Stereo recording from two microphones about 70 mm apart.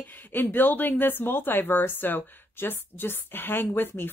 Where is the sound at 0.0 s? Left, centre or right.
Left.